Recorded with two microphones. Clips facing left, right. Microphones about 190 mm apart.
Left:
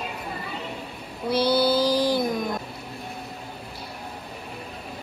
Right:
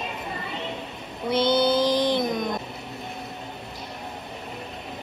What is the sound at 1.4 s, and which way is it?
Child singing, 5° left (ahead or behind).